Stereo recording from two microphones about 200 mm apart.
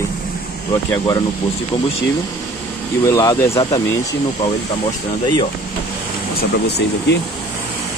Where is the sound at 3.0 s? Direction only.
15° left (ahead or behind).